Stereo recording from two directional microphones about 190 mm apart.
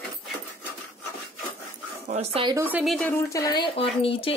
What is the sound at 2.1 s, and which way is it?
Speech, 35° right (ahead or behind).